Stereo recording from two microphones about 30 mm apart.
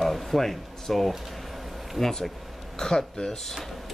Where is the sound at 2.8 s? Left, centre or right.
Left.